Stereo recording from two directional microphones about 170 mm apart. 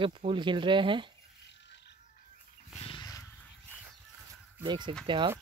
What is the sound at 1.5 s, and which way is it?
Music, 90° left.